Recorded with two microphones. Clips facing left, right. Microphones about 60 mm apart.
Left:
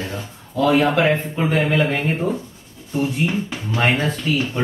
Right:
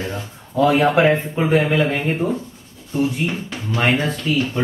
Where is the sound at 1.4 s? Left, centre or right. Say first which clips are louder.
Right 2 dB; centre.